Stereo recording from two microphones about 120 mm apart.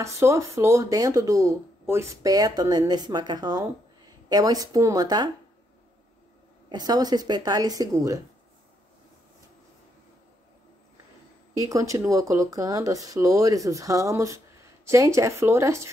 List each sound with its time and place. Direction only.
0.0 s a woman's voice: 25° right (ahead or behind)
6.7 s a woman's voice: 35° right (ahead or behind)
11.5 s speech: 25° right (ahead or behind)